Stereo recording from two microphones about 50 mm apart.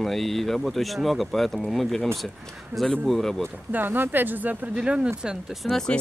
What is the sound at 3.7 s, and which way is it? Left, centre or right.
Speech, right.